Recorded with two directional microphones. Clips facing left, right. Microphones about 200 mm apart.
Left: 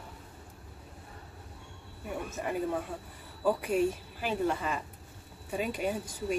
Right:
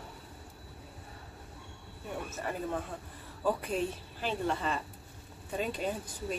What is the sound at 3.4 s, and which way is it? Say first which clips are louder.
A woman's voice: left 4 dB; 10° left (ahead or behind).